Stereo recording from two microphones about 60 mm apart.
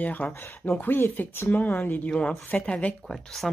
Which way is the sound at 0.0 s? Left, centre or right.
Left.